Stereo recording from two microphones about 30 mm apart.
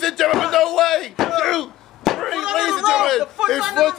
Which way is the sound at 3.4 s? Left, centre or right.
Right.